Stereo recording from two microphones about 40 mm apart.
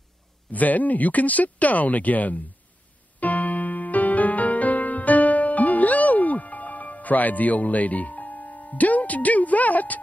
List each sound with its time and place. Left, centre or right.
0.5 s speech: left
3.2 s music: left